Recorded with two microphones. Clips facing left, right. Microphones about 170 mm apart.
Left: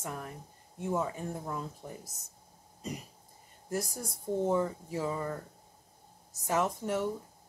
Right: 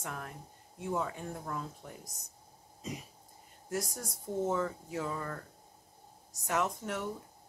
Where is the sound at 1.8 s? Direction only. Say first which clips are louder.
Left 4 dB; 30° left (ahead or behind).